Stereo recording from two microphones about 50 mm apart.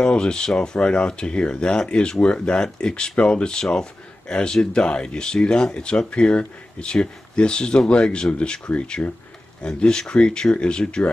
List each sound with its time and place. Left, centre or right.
0.0 s speech: centre